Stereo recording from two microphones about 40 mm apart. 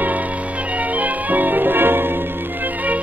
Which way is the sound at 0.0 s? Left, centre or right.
Right.